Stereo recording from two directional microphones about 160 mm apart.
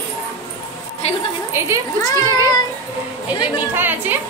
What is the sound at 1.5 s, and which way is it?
Speech, 15° right (ahead or behind).